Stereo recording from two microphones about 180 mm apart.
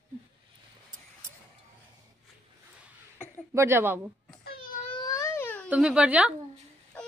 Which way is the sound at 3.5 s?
15° right (ahead or behind).